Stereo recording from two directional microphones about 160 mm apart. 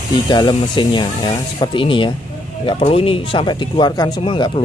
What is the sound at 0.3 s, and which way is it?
Speech, 25° left (ahead or behind).